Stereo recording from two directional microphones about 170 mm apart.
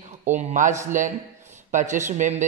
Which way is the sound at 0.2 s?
45° right (ahead or behind).